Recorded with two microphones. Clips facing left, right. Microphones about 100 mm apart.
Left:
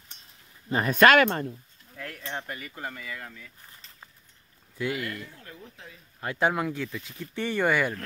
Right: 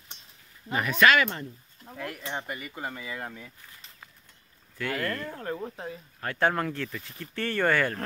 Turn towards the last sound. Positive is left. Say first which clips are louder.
# even
turn(degrees=10)  # may be behind; listen again after turning